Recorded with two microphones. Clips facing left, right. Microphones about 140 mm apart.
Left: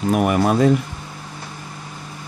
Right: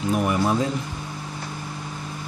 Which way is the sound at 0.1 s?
65° left (ahead or behind).